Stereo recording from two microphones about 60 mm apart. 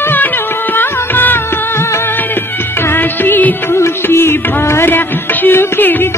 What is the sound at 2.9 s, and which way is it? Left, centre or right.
Music, left.